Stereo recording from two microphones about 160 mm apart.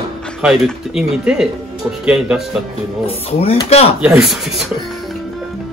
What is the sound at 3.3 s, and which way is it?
Speech, 40° left (ahead or behind).